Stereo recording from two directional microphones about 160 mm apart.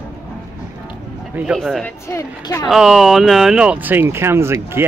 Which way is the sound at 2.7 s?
Centre (ahead or behind).